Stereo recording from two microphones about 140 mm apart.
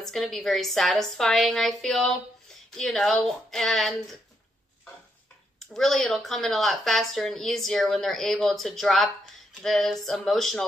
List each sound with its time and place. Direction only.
0.0 s speech: centre (ahead or behind)
5.6 s speech: centre (ahead or behind)